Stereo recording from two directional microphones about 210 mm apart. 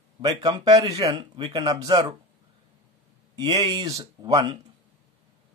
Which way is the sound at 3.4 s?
20° right (ahead or behind).